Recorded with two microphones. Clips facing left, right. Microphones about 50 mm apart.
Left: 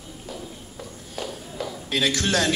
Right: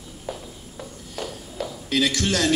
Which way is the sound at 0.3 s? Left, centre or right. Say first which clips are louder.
Right 4 dB; right.